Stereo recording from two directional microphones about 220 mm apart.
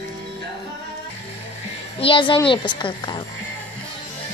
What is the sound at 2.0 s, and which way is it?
Speech, 25° left (ahead or behind).